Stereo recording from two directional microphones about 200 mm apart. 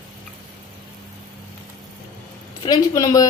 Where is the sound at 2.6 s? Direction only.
20° left (ahead or behind).